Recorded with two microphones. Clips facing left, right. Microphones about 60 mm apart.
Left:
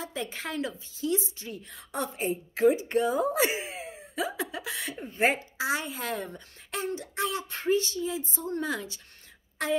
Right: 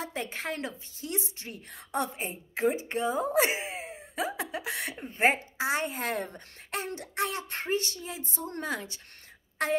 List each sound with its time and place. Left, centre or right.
0.0 s speech: right
1.0 s speech: right
2.1 s speech: right
4.9 s speech: centre
5.6 s speech: right